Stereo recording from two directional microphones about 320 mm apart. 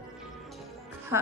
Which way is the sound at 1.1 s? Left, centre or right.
Centre.